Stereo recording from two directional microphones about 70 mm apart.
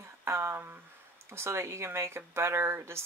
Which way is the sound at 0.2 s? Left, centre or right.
Right.